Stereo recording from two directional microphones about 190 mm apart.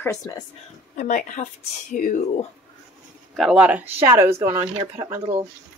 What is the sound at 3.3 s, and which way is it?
Speech, centre (ahead or behind).